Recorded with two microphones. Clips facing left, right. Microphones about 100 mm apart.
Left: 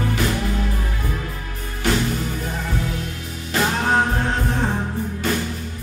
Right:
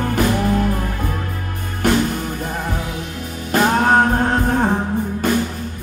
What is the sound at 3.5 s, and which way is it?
Music, 45° right (ahead or behind).